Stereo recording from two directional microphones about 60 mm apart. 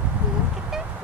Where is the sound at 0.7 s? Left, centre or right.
Centre.